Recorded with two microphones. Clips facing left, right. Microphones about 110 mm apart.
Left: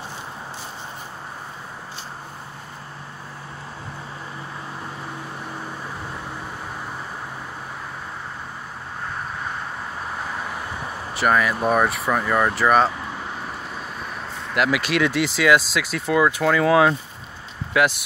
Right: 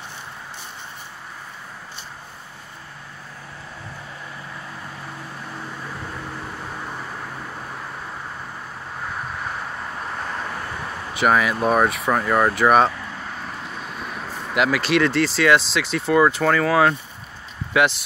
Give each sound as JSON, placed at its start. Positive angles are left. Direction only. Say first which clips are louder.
{"t": 10.1, "sound": "vehicle", "louder": "even", "side_deg": 5}
{"t": 11.1, "sound": "speech", "louder": "right 1 dB", "side_deg": -5}
{"t": 14.3, "sound": "vehicle", "louder": "right 1 dB", "side_deg": -5}
{"t": 14.7, "sound": "speech", "louder": "right 2 dB", "side_deg": 10}